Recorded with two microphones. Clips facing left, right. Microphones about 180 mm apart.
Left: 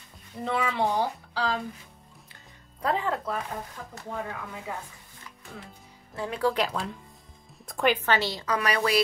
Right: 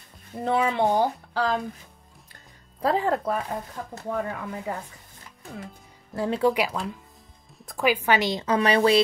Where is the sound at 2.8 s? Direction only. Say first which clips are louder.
Right 4 dB; 35° right (ahead or behind).